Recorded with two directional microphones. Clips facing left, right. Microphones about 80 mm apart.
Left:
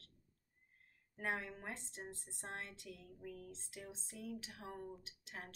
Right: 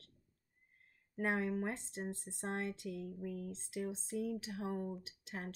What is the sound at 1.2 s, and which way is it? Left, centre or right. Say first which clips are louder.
Speech: right 7 dB; right.